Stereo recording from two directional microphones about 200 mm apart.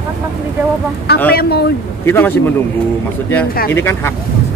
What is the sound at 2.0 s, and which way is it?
Speech, 10° left (ahead or behind).